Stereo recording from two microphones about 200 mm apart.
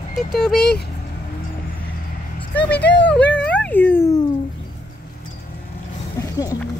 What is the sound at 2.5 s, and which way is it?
Speech, 5° left (ahead or behind).